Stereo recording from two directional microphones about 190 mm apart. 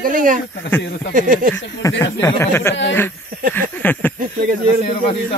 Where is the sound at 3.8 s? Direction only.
10° left (ahead or behind).